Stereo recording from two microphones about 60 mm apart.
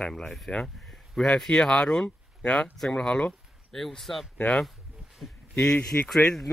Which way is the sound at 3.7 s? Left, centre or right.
Centre.